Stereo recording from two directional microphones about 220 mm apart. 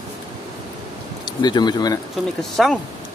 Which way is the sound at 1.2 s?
20° left (ahead or behind).